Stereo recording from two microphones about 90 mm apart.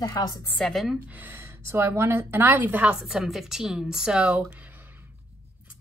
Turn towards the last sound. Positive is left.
turn(degrees=-15)  # may be behind; listen again after turning